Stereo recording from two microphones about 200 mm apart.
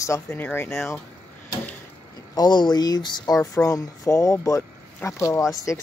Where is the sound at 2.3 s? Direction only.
20° left (ahead or behind).